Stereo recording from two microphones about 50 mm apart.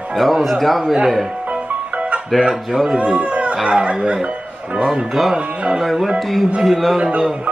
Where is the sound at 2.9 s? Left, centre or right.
Right.